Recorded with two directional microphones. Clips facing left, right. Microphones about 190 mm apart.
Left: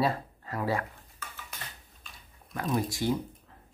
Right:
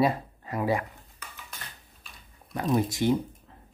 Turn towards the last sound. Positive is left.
turn(degrees=-20)  # may be behind; listen again after turning